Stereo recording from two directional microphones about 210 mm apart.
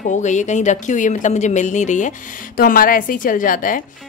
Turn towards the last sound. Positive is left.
turn(degrees=40)  # may be behind; listen again after turning